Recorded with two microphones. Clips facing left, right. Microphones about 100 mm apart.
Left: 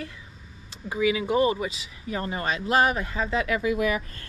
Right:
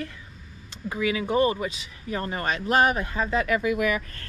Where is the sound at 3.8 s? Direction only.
35° left (ahead or behind).